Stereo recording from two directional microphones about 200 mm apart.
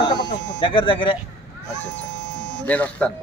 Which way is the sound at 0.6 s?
25° left (ahead or behind).